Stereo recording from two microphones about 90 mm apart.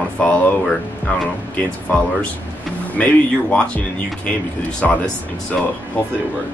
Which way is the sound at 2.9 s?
15° left (ahead or behind).